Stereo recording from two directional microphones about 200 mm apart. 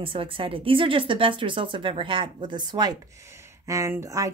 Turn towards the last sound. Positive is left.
turn(degrees=-15)  # may be behind; listen again after turning